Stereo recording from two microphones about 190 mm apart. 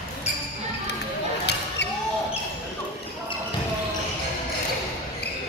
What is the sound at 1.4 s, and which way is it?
Basketball bounce, 65° left (ahead or behind).